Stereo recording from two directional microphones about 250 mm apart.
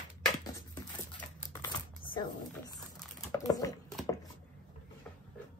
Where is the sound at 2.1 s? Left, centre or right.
Centre.